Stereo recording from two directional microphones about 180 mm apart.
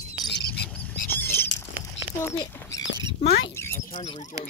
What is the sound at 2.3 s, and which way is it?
Rodents, 20° left (ahead or behind).